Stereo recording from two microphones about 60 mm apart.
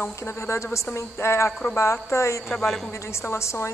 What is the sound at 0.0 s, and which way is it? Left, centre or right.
A woman's voice, left.